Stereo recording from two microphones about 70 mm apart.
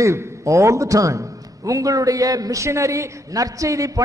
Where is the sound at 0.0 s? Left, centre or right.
Right.